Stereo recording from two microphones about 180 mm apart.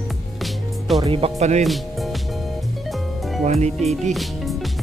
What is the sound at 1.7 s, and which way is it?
Music, centre (ahead or behind).